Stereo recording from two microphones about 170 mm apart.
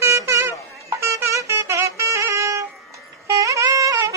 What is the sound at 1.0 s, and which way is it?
Music, 15° right (ahead or behind).